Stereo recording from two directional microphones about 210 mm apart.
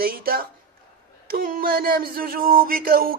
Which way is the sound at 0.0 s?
45° right (ahead or behind).